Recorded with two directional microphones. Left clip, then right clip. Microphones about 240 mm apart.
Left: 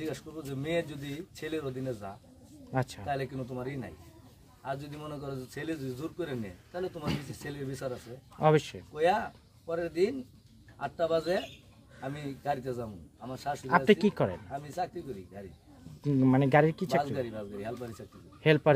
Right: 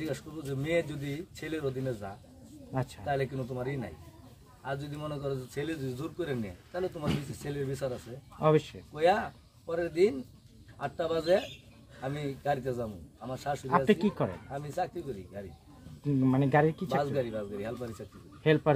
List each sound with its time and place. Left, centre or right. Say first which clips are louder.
0.0 s speech: right 1 dB; centre
2.7 s speech: left 3 dB; left
3.1 s speech: right 2 dB; centre
8.4 s speech: left 1 dB; left
8.9 s speech: right 1 dB; centre
13.7 s speech: left 3 dB; left
14.8 s speech: right 1 dB; centre
16.0 s speech: left 2 dB; left
17.0 s speech: right 2 dB; centre
18.4 s speech: left 1 dB; left